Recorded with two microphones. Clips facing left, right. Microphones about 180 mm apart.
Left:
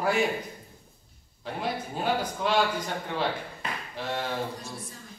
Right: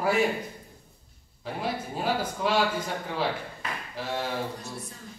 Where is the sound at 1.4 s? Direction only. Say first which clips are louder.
Even; centre (ahead or behind).